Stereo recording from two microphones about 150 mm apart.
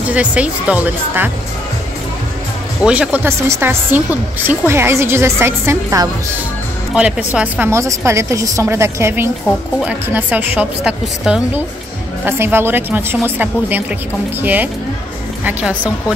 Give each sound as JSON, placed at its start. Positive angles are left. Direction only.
{"t": 0.1, "sound": "a woman's voice", "side_deg": -10}
{"t": 2.8, "sound": "a woman's voice", "side_deg": -10}
{"t": 6.9, "sound": "a woman's voice", "side_deg": -5}